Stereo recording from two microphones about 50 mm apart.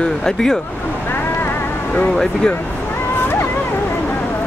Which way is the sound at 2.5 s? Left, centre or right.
Left.